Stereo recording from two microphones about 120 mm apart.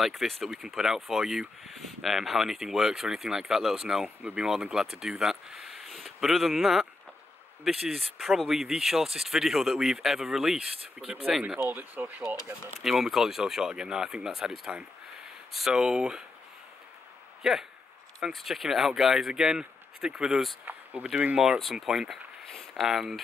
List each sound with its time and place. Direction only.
0.0 s speech: centre (ahead or behind)
12.8 s speech: 5° right (ahead or behind)
17.4 s speech: 5° right (ahead or behind)
20.6 s a sound: 15° right (ahead or behind)
21.1 s speech: 10° right (ahead or behind)